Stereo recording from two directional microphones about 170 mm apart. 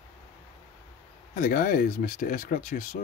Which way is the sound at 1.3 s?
50° left (ahead or behind).